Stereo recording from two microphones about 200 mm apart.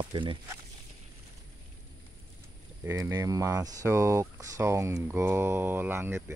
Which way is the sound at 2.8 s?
15° right (ahead or behind).